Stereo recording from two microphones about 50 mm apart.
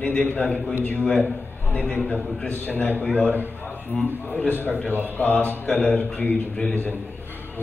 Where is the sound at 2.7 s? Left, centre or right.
Left.